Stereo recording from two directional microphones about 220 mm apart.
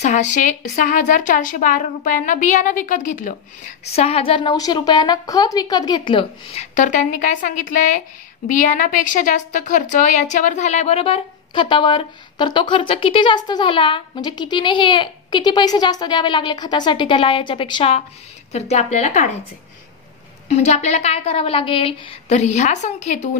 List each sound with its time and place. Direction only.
0.0 s a woman's voice: 35° left (ahead or behind)
20.5 s speech: 30° left (ahead or behind)